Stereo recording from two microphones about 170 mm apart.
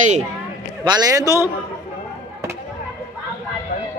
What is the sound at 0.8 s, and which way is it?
Speech, 25° right (ahead or behind).